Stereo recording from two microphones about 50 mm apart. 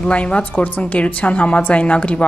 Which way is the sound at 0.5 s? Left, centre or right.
Left.